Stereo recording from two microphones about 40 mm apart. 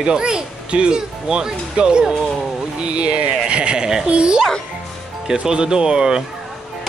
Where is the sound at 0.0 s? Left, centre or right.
Centre.